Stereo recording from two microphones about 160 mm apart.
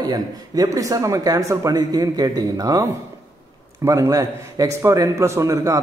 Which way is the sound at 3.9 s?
20° right (ahead or behind).